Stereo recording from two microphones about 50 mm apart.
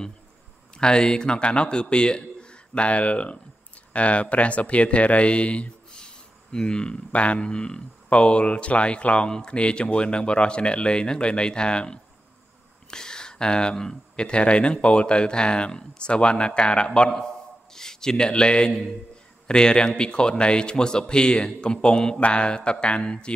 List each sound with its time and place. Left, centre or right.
0.7 s a man's voice: centre